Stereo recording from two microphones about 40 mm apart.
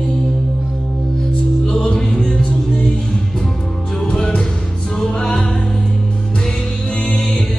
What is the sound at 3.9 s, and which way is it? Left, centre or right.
Music, left.